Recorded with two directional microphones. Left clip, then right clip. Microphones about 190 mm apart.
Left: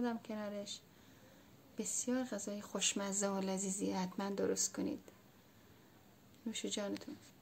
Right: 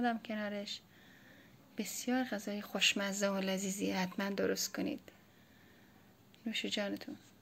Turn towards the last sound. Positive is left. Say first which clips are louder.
# right 3 dB
turn(degrees=0)  # may be behind; listen again after turning